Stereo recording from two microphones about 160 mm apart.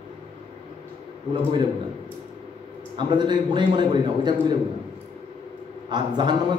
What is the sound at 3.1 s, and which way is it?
A man's voice, 30° right (ahead or behind).